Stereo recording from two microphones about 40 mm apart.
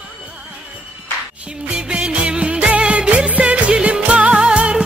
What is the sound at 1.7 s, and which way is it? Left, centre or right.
Music, right.